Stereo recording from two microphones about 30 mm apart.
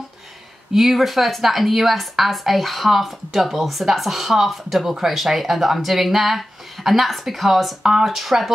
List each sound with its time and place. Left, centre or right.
0.7 s a woman's voice: centre
7.8 s speech: centre
8.1 s a woman's voice: centre